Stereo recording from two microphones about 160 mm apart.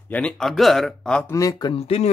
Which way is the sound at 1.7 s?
40° left (ahead or behind).